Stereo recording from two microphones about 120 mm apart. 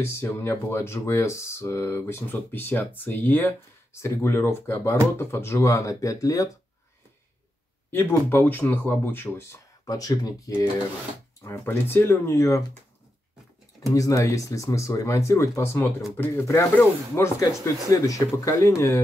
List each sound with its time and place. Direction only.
0.0 s speech: 20° left (ahead or behind)
7.9 s speech: 20° left (ahead or behind)
9.8 s speech: 30° left (ahead or behind)
13.9 s speech: 25° left (ahead or behind)